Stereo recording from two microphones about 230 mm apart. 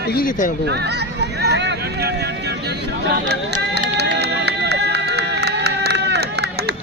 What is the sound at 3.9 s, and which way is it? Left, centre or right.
Music, right.